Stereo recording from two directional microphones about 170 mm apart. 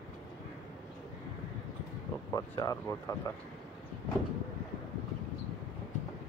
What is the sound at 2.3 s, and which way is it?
Speech, 20° left (ahead or behind).